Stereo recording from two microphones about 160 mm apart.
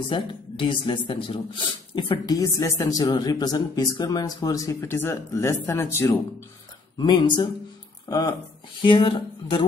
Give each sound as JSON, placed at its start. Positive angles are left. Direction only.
{"t": 0.1, "sound": "a woman's voice", "side_deg": 30}
{"t": 7.0, "sound": "a woman's voice", "side_deg": 25}